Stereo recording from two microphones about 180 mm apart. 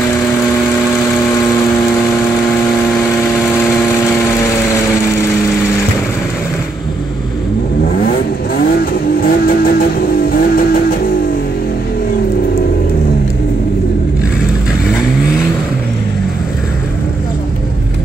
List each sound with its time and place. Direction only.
9.2 s vehicle: 55° left (ahead or behind)
10.3 s music: 55° left (ahead or behind)